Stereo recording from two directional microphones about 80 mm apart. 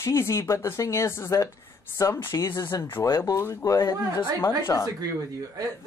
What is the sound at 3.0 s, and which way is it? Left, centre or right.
Speech, left.